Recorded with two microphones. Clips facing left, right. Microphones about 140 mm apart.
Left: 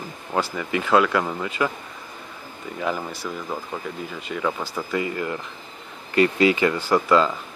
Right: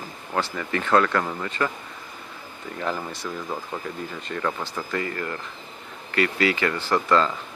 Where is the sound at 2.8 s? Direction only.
5° left (ahead or behind).